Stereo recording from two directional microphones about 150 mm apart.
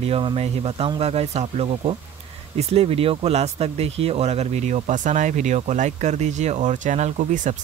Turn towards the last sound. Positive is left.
turn(degrees=-55)  # may be behind; listen again after turning